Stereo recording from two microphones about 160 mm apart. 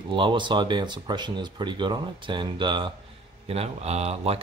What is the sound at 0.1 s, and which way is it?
Speech, 30° right (ahead or behind).